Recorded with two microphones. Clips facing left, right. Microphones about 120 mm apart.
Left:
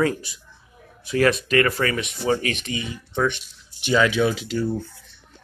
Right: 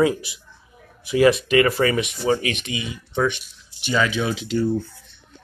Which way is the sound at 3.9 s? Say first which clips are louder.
Left 2 dB; 5° left (ahead or behind).